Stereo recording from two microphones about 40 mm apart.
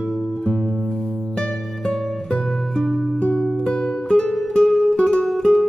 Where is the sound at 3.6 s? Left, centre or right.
Left.